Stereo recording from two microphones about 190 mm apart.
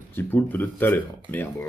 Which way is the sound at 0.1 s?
10° left (ahead or behind).